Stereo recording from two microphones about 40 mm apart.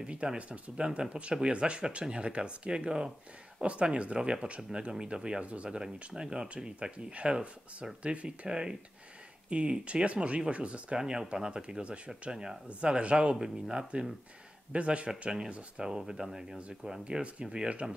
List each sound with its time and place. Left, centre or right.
0.0 s speech: right
5.8 s a man's voice: centre
8.5 s speech: centre
11.0 s speech: centre
12.6 s a man's voice: right
15.0 s speech: centre
17.2 s speech: right